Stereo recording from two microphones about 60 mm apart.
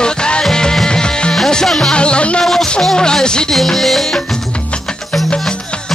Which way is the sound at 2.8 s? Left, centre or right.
Centre.